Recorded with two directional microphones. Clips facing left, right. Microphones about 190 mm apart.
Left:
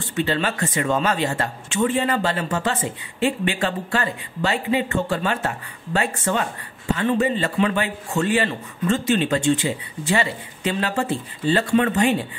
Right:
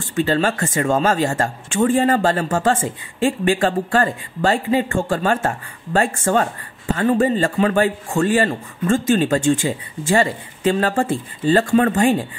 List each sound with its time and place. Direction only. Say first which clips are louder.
0.0 s speech: right 4 dB; 45° right (ahead or behind)